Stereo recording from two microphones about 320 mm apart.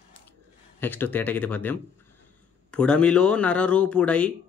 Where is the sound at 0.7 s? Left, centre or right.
Centre.